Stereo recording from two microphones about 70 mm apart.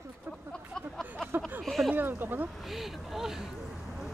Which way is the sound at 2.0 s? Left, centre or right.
Right.